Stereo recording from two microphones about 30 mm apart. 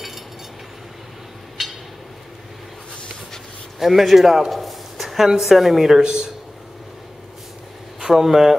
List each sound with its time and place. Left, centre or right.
1.6 s a sound: centre
3.8 s a man's voice: centre
4.5 s a sound: centre
5.4 s a man's voice: centre
5.9 s a man's voice: right
8.0 s speech: centre